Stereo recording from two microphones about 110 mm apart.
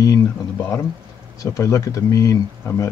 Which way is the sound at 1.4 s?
30° left (ahead or behind).